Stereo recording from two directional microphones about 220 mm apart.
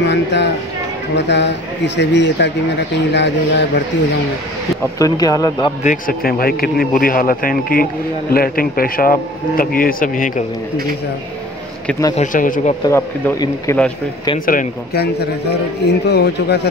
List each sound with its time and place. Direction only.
0.0 s speech: 50° left (ahead or behind)
4.9 s speech: 15° left (ahead or behind)
5.9 s a man's voice: 40° left (ahead or behind)
12.2 s a man's voice: 40° left (ahead or behind)
12.8 s speech: 15° left (ahead or behind)
14.4 s a man's voice: 40° left (ahead or behind)